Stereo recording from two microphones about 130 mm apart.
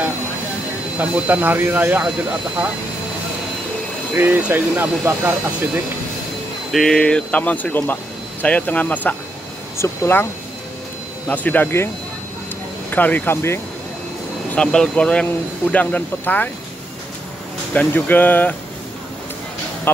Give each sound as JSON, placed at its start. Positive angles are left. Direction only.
{"t": 0.9, "sound": "speech", "side_deg": -10}
{"t": 4.2, "sound": "speech", "side_deg": -15}
{"t": 6.7, "sound": "speech", "side_deg": 0}
{"t": 11.2, "sound": "speech", "side_deg": 15}
{"t": 12.9, "sound": "speech", "side_deg": 15}
{"t": 14.5, "sound": "speech", "side_deg": 5}
{"t": 17.7, "sound": "speech", "side_deg": 15}